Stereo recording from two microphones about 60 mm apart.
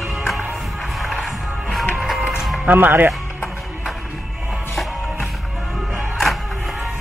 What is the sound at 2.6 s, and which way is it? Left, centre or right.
Speech, right.